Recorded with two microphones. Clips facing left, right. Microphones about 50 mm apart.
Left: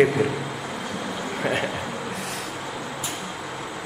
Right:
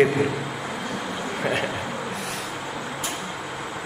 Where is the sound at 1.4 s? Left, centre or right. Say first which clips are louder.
Even; centre.